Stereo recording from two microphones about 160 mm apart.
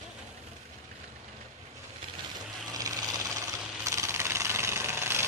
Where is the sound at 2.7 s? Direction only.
20° right (ahead or behind).